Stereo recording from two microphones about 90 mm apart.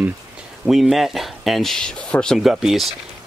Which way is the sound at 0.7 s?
Centre (ahead or behind).